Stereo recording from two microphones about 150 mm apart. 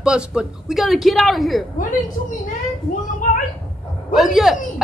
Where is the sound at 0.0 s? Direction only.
5° right (ahead or behind).